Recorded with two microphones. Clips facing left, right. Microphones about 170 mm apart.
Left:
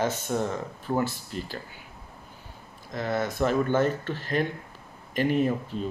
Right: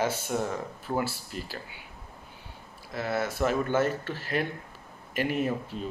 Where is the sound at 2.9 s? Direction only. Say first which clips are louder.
Left 2 dB; 10° right (ahead or behind).